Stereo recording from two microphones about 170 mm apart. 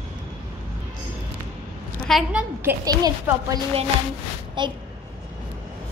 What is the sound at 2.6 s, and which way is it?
Speech, 20° right (ahead or behind).